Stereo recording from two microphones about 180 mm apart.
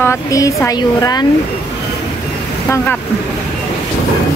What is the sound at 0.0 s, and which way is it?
Speech, 15° left (ahead or behind).